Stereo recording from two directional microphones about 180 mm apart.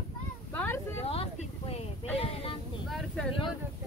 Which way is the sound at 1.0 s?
35° left (ahead or behind).